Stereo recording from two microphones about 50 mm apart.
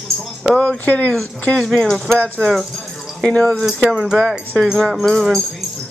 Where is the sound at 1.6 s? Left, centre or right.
Centre.